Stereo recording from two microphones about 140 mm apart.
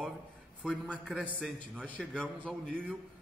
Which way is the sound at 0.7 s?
5° right (ahead or behind).